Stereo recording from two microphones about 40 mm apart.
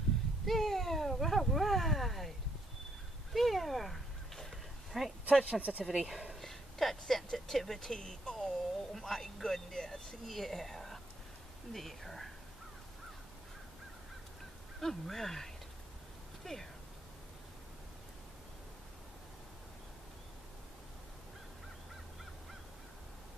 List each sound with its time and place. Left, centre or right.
0.5 s a sound: centre
3.3 s speech: centre
4.5 s a sound: centre
5.4 s speech: right
5.9 s speech: centre
6.4 s a sound: centre
7.3 s speech: centre
8.4 s speech: centre
10.2 s speech: centre
14.8 s speech: centre